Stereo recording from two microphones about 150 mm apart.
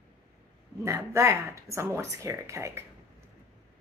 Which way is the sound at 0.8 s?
15° right (ahead or behind).